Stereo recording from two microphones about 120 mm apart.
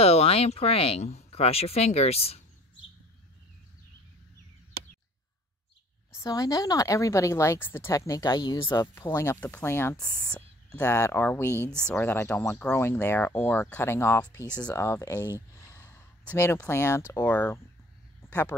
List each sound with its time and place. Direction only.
0.0 s speech: 55° left (ahead or behind)
6.1 s speech: 30° left (ahead or behind)
8.9 s speech: 20° left (ahead or behind)
10.3 s a sound: 15° left (ahead or behind)
11.0 s speech: 20° left (ahead or behind)
11.7 s speech: 10° left (ahead or behind)
15.5 s gasp: 25° left (ahead or behind)
16.3 s speech: 20° left (ahead or behind)
18.2 s a sound: 20° left (ahead or behind)